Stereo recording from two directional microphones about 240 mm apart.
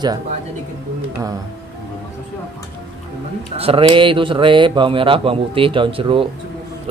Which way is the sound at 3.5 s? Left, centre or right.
Right.